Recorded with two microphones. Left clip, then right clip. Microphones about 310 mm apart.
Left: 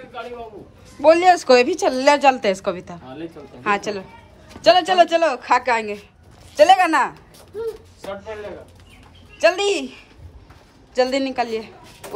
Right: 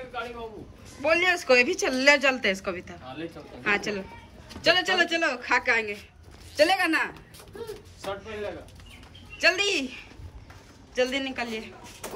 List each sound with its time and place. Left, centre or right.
1.0 s a woman's voice: centre
9.4 s a woman's voice: centre